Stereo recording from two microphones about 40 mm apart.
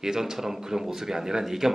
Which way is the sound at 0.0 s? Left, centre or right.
Centre.